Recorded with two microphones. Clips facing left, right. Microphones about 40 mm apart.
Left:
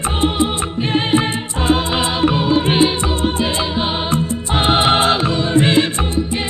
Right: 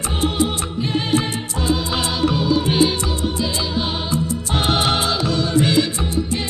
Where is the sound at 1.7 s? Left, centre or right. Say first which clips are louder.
Left 5 dB; left.